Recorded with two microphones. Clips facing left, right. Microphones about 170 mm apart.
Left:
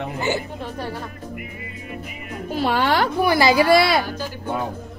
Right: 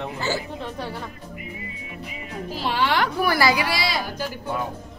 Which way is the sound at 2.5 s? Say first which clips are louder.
Left 4 dB; 50° left (ahead or behind).